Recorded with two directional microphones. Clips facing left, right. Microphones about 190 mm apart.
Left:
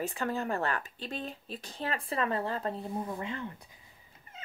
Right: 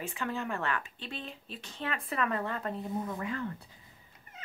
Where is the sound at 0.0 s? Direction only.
40° left (ahead or behind); by 3.6 s 20° left (ahead or behind).